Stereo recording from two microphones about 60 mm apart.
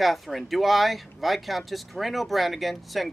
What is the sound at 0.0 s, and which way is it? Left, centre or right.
Speech, centre.